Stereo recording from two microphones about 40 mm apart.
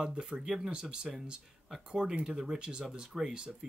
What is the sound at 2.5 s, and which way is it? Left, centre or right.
Speech, right.